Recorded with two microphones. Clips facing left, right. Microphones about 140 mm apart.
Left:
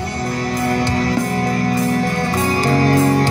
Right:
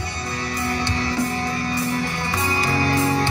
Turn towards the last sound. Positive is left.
turn(degrees=45)  # may be behind; listen again after turning